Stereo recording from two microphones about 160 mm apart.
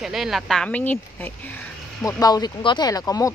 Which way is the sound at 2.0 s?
25° left (ahead or behind).